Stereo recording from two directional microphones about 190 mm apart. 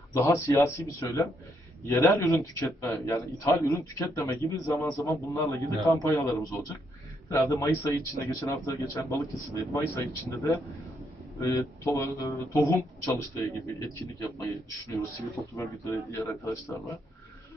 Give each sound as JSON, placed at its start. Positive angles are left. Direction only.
{"t": 0.1, "sound": "speech", "side_deg": 15}